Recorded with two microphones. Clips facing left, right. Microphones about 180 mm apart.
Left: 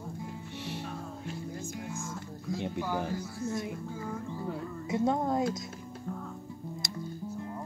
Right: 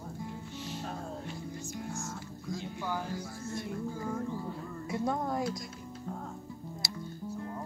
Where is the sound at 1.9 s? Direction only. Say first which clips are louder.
Left 1 dB; 80° left.